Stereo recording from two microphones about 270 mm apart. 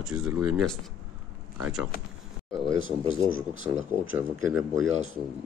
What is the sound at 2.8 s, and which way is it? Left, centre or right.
Speech, centre.